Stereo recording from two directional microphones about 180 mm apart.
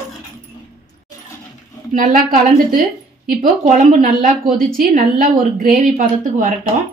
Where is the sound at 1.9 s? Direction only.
50° right (ahead or behind).